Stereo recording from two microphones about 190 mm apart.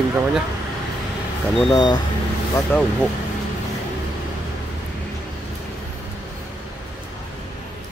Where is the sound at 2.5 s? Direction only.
10° left (ahead or behind).